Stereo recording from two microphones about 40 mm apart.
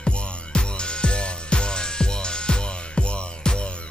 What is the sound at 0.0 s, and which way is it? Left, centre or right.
Music, left.